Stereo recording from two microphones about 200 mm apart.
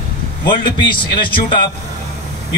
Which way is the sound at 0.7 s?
25° left (ahead or behind).